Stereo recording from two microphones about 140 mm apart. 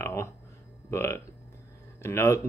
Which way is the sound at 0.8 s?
20° left (ahead or behind).